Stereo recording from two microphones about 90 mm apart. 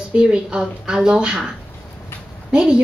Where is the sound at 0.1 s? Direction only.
10° right (ahead or behind).